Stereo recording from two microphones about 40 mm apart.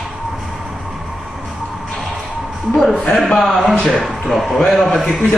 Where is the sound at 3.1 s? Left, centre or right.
Centre.